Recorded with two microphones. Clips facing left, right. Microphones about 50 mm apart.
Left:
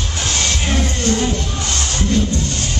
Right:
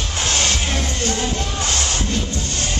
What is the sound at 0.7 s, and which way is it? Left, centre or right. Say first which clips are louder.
Music: left 4 dB; left.